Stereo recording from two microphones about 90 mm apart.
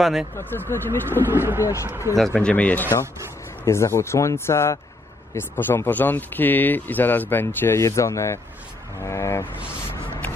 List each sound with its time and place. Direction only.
0.0 s speech: 5° right (ahead or behind)
0.7 s speech: 25° left (ahead or behind)
1.3 s speech: 25° right (ahead or behind)
1.6 s speech: 35° left (ahead or behind)
1.9 s speech: 25° right (ahead or behind)
2.1 s speech: centre (ahead or behind)
2.4 s speech: 15° left (ahead or behind)
3.6 s speech: 30° left (ahead or behind)